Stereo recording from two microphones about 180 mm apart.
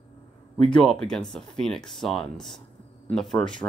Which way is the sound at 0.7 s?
5° left (ahead or behind).